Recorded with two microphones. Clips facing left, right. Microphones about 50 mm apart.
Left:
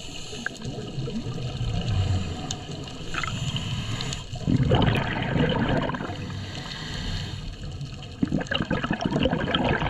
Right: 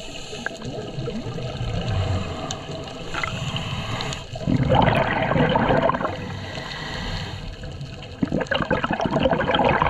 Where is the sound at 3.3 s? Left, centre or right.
Right.